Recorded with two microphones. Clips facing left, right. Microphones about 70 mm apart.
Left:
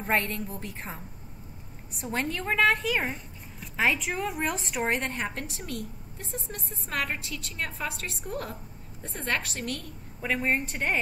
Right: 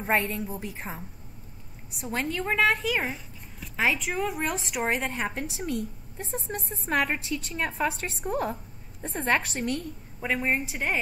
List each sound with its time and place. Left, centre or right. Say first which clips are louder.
0.0 s a woman's voice: right 2 dB; centre
6.1 s a woman's voice: right 5 dB; right
7.5 s a woman's voice: right 5 dB; right
7.9 s a woman's voice: right 3 dB; right
8.3 s a woman's voice: right 7 dB; right
9.0 s a woman's voice: right 5 dB; right
10.2 s a woman's voice: even; centre